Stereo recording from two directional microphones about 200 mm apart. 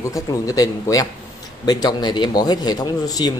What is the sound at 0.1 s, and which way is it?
Speech, 15° left (ahead or behind).